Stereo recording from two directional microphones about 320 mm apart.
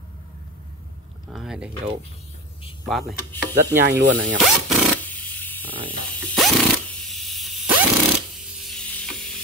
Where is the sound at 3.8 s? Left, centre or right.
Right.